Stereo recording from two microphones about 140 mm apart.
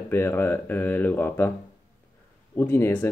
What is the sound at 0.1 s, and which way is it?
Speech, 15° left (ahead or behind).